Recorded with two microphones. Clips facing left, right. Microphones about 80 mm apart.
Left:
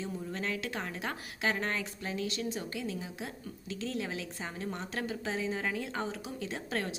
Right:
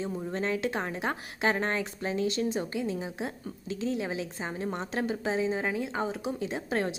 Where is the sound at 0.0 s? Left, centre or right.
Right.